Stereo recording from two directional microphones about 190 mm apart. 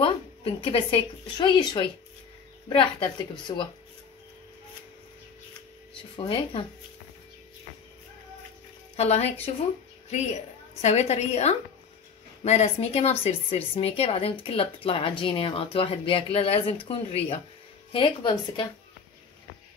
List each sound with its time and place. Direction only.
0.0 s speech: 25° left (ahead or behind)
6.1 s speech: 25° left (ahead or behind)
8.9 s a woman's voice: 35° left (ahead or behind)